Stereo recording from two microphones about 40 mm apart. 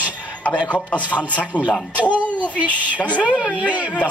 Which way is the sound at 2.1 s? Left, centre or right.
Right.